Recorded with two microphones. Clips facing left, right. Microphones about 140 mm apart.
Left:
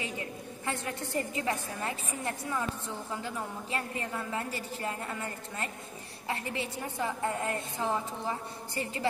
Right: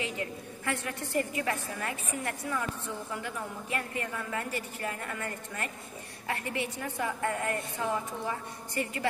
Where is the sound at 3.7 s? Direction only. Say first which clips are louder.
Even; 30° left (ahead or behind).